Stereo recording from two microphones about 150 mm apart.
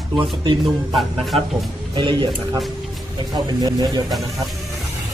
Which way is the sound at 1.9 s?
35° right (ahead or behind).